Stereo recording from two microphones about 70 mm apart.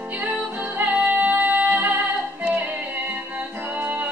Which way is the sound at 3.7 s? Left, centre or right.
Right.